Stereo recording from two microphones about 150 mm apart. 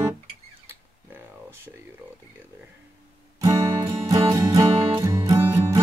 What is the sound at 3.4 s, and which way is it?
Music, 25° right (ahead or behind).